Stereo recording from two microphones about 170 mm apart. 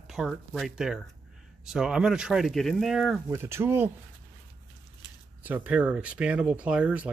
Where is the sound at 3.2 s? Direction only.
15° right (ahead or behind).